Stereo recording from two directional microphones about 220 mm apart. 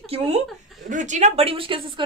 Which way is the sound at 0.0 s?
25° right (ahead or behind).